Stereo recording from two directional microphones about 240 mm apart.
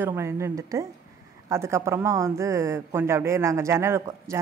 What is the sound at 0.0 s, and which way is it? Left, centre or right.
A man's voice, centre.